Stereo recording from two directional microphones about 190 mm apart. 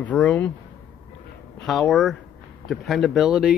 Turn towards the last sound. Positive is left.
turn(degrees=-5)  # may be behind; listen again after turning